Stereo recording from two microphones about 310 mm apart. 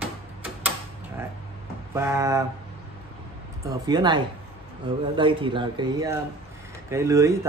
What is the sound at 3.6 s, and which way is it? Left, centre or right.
Speech, centre.